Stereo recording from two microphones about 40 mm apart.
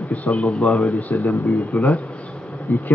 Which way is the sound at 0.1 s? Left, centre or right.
Left.